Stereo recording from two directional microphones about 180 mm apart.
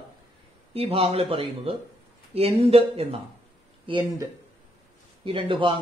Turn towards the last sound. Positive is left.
turn(degrees=-30)  # may be behind; listen again after turning